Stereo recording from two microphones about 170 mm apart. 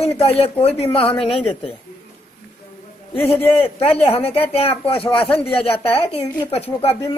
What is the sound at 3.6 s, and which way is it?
A woman's voice, 35° left (ahead or behind).